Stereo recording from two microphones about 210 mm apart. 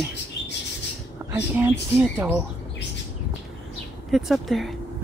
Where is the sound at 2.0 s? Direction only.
Centre (ahead or behind).